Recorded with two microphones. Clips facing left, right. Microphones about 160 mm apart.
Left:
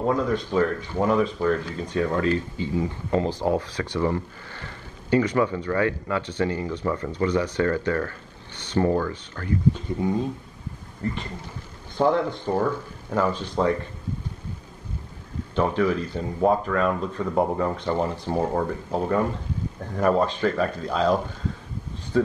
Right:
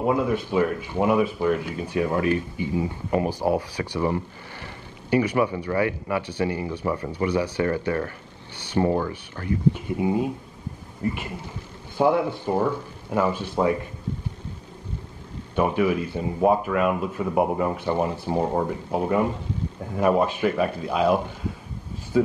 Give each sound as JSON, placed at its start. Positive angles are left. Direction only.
{"t": 0.0, "sound": "speech", "side_deg": -10}
{"t": 9.8, "sound": "speech", "side_deg": -10}
{"t": 15.5, "sound": "speech", "side_deg": -15}